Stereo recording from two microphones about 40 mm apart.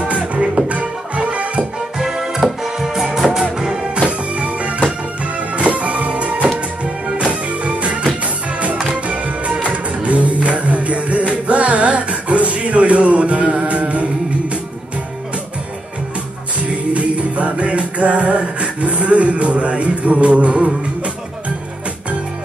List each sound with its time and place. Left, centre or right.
0.0 s music: right
2.0 s music: centre
4.3 s music: right
16.6 s music: right